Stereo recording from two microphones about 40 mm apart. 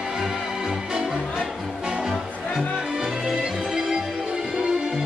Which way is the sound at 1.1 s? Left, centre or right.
Centre.